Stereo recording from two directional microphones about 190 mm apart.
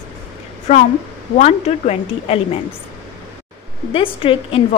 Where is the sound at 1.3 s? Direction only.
35° left (ahead or behind).